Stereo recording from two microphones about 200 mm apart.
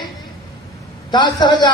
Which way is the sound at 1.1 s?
20° left (ahead or behind).